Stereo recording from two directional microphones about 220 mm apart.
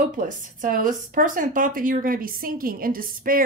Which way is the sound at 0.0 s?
35° right (ahead or behind).